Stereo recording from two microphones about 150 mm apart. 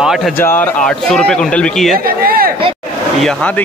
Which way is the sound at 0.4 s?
15° left (ahead or behind).